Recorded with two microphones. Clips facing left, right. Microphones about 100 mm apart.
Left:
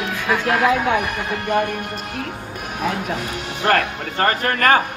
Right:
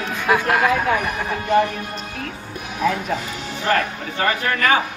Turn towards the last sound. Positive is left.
turn(degrees=50)  # may be behind; listen again after turning